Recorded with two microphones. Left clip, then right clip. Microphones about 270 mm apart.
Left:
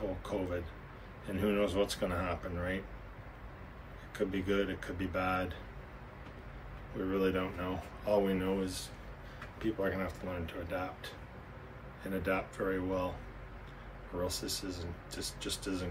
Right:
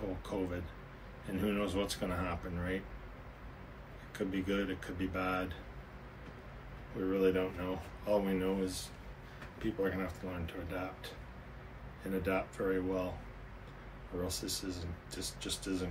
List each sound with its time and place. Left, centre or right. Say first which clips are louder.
0.2 s speech: left 2 dB; centre
4.1 s speech: left 3 dB; centre
7.1 s speech: right 2 dB; centre
14.2 s speech: left 2 dB; centre